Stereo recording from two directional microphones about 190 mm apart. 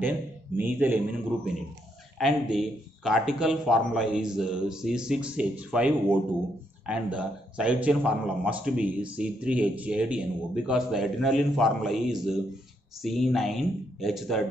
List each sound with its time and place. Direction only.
0.6 s a man's voice: 10° right (ahead or behind)